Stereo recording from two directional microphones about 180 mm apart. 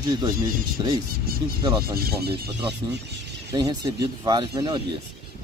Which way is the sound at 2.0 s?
60° right (ahead or behind).